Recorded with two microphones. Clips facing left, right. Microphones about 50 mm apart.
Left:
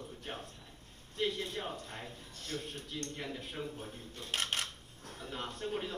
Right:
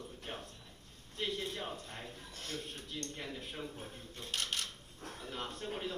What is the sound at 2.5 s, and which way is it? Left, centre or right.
Speech, left.